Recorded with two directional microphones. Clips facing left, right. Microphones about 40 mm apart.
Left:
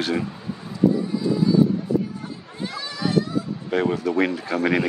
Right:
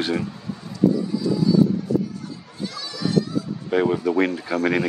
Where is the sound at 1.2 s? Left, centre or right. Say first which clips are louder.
Left 1 dB; left.